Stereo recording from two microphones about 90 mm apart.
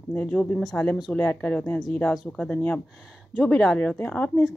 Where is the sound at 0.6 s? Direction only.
Centre (ahead or behind).